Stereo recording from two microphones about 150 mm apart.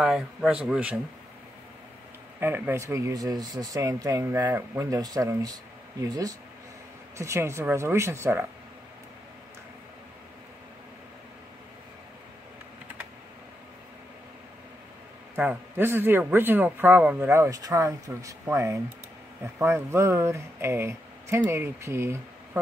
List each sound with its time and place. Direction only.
0.0 s a man's voice: 5° right (ahead or behind)
2.4 s a man's voice: 15° right (ahead or behind)
15.3 s a man's voice: 15° right (ahead or behind)